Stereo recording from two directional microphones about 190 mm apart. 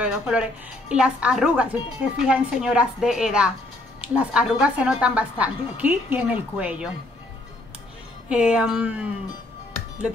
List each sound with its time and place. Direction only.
0.0 s a woman's voice: 5° right (ahead or behind)
8.3 s speech: 5° right (ahead or behind)